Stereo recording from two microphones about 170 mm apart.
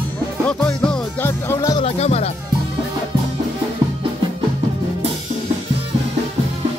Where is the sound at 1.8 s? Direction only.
40° left (ahead or behind).